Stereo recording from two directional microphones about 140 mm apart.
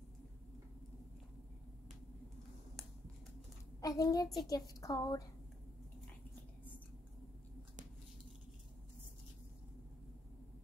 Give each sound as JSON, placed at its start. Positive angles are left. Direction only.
{"t": 3.8, "sound": "a woman's voice", "side_deg": 25}